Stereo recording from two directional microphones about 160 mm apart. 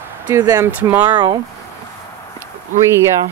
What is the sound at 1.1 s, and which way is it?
Speech, 25° right (ahead or behind).